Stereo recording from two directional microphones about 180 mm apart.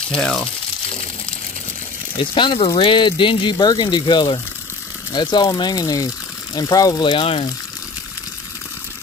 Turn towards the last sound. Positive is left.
turn(degrees=30)  # may be behind; listen again after turning